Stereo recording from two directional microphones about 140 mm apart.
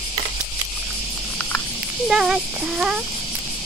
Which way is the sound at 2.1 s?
5° right (ahead or behind).